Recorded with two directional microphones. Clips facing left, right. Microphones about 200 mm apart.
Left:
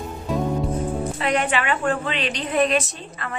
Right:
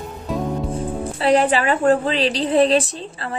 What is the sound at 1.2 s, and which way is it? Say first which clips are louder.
A woman's voice: right 7 dB; 35° right (ahead or behind).